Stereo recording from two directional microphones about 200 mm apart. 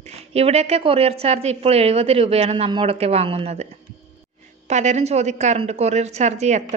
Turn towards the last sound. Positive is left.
turn(degrees=-35)  # may be behind; listen again after turning